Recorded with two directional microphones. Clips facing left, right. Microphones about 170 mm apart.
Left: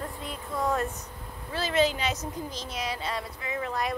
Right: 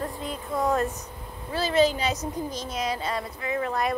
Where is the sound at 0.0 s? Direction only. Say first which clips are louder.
Right 4 dB; 40° right (ahead or behind).